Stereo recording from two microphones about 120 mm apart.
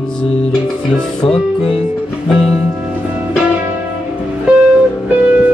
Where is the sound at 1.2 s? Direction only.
5° left (ahead or behind).